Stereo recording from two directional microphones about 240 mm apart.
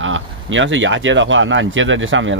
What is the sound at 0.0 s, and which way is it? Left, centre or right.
Speech, right.